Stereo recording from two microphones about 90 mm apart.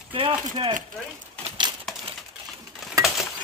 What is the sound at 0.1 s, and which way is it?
Speech, 70° right (ahead or behind).